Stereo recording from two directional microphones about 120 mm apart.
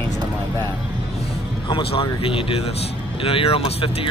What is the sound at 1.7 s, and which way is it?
Speech, 50° left (ahead or behind).